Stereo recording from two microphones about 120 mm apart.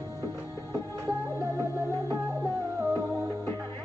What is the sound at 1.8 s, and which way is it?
Music, 25° right (ahead or behind).